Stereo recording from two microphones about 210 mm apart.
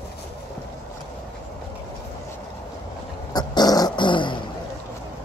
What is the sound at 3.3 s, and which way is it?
Dog, 20° left (ahead or behind).